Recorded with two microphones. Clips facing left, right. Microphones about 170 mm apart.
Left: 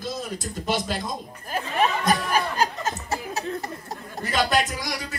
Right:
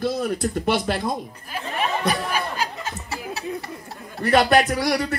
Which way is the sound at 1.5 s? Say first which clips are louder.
Left 4 dB; 45° left (ahead or behind).